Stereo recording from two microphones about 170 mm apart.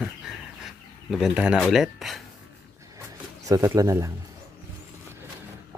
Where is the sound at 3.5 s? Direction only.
20° right (ahead or behind).